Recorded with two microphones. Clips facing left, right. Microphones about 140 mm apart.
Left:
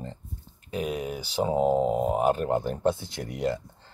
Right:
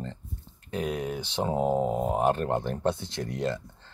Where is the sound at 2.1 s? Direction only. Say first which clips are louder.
Left 1 dB; 5° left (ahead or behind).